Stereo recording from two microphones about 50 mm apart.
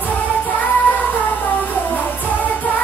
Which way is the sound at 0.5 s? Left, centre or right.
Left.